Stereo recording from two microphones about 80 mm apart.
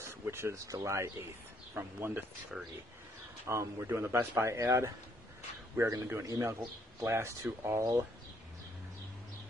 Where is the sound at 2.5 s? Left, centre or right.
Centre.